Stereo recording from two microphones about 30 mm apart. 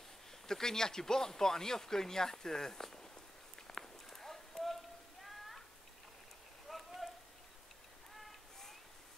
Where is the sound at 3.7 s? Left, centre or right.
Centre.